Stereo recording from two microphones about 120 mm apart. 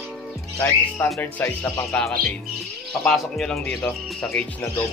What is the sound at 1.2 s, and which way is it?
Speech, 15° left (ahead or behind).